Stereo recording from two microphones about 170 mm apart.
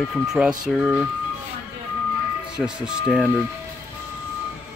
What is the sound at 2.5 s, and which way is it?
Speech, 5° right (ahead or behind).